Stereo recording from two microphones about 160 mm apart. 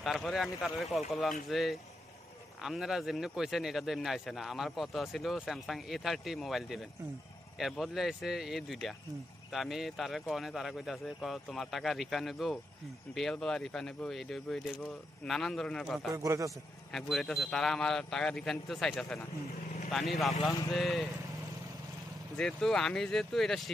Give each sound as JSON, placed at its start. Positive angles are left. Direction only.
{"t": 0.0, "sound": "speech", "side_deg": 0}
{"t": 16.1, "sound": "a man's voice", "side_deg": -20}
{"t": 16.9, "sound": "speech", "side_deg": 0}
{"t": 22.4, "sound": "speech", "side_deg": 5}